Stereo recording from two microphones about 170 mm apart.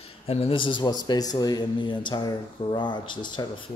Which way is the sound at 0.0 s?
35° left (ahead or behind).